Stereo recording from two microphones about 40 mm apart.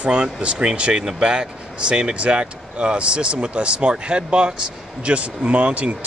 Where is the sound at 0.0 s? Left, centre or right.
Right.